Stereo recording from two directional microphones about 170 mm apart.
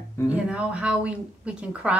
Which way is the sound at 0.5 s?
5° right (ahead or behind).